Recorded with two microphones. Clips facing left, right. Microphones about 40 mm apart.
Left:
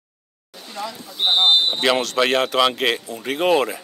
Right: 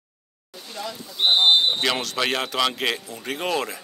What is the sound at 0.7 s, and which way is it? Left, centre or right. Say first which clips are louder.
Speech: left 3 dB; centre.